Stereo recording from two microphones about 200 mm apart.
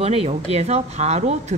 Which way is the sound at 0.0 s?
30° right (ahead or behind).